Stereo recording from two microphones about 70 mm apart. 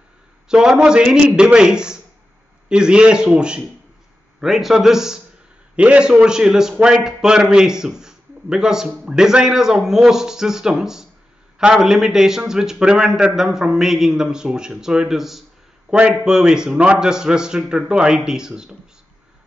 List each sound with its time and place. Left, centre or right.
0.5 s a man's voice: centre
4.4 s a man's voice: centre